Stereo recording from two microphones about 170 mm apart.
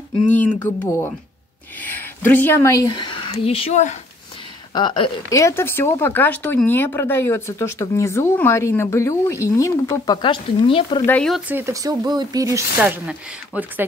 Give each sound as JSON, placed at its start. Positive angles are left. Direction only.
{"t": 0.6, "sound": "speech", "side_deg": 20}
{"t": 5.4, "sound": "speech", "side_deg": 15}
{"t": 11.1, "sound": "speech", "side_deg": 5}
{"t": 11.4, "sound": "speech", "side_deg": -15}
{"t": 12.7, "sound": "speech", "side_deg": -5}